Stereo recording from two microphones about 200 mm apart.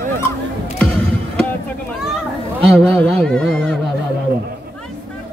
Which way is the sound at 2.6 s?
Centre (ahead or behind).